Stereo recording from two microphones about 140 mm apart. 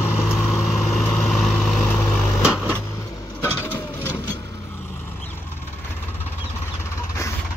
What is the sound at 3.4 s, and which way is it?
Vehicle, 15° left (ahead or behind).